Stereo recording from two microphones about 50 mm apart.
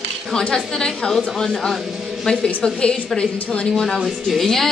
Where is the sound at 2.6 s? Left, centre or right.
Centre.